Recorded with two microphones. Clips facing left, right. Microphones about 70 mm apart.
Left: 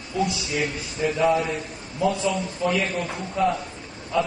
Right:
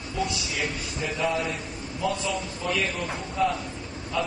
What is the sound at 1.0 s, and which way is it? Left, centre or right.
Speech, centre.